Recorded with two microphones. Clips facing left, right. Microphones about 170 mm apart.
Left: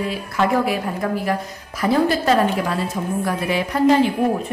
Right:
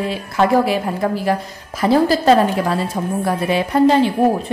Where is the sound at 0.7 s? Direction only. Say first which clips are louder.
Right 3 dB; 30° right (ahead or behind).